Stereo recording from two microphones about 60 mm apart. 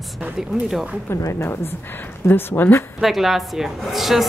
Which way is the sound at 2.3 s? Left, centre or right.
Left.